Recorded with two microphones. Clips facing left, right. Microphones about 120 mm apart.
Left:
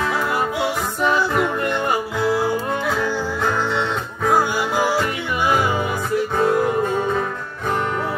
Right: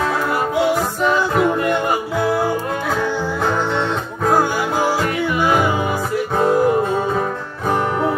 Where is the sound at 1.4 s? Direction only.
15° right (ahead or behind).